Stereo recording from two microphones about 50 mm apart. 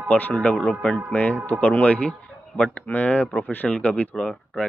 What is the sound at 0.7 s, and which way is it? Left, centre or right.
Speech, left.